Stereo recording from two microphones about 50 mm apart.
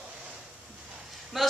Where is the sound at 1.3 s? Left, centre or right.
Centre.